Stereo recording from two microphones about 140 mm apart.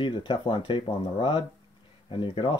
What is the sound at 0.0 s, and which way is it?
Speech, 35° left (ahead or behind).